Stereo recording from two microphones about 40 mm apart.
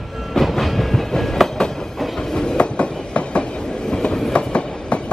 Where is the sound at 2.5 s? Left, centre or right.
Left.